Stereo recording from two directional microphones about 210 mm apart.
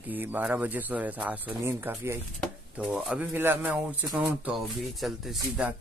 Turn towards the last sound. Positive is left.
turn(degrees=-5)  # may be behind; listen again after turning